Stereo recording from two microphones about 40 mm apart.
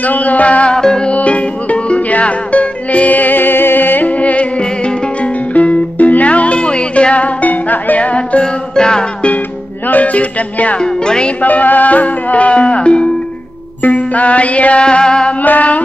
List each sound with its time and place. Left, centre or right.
0.0 s music: left
0.7 s music: centre
1.1 s music: left
4.1 s music: left
7.4 s music: left
8.7 s music: centre
9.8 s music: left
10.8 s music: left
11.4 s music: left
13.8 s music: left
15.4 s music: left